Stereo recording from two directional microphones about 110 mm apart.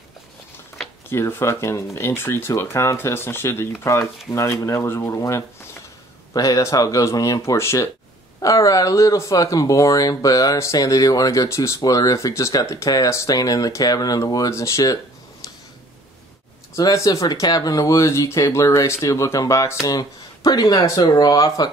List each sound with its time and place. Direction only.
1.1 s speech: 25° left (ahead or behind)
16.7 s speech: 35° left (ahead or behind)